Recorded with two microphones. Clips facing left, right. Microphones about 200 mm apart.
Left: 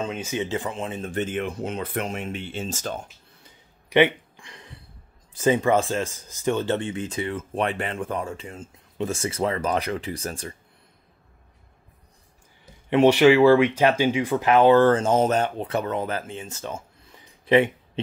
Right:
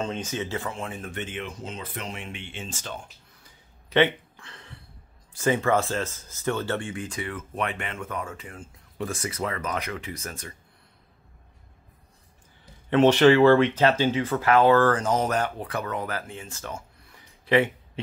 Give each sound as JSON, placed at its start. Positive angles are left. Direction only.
{"t": 0.0, "sound": "speech", "side_deg": 5}
{"t": 1.1, "sound": "speech", "side_deg": 45}
{"t": 3.4, "sound": "a sound", "side_deg": 15}
{"t": 5.4, "sound": "speech", "side_deg": 20}
{"t": 12.9, "sound": "speech", "side_deg": 10}